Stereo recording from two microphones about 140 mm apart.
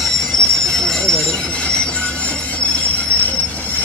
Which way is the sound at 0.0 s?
Centre (ahead or behind).